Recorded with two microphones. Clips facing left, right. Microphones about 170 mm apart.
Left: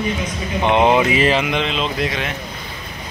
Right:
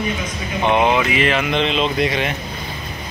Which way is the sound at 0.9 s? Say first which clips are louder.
Left 3 dB; 35° left (ahead or behind).